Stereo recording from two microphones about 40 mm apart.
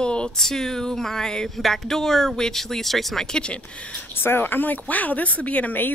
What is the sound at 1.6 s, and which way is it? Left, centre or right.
Speech, centre.